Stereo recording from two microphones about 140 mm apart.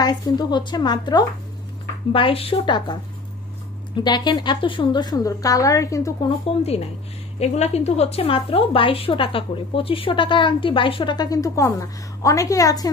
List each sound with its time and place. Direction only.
0.0 s a woman's voice: 30° left (ahead or behind)
2.1 s a woman's voice: 40° left (ahead or behind); by 6.3 s 25° left (ahead or behind)
7.3 s a woman's voice: 50° left (ahead or behind); by 12.9 s 25° left (ahead or behind)